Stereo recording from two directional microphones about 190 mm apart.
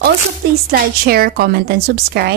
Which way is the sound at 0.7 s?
55° right (ahead or behind).